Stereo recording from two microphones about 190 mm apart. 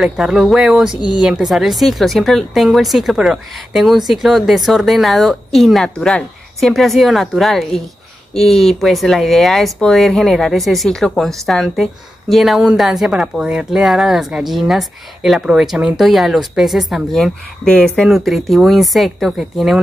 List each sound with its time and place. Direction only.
0.0 s speech: 5° right (ahead or behind)